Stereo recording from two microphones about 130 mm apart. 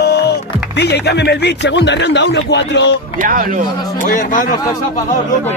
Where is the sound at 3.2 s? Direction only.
90° right.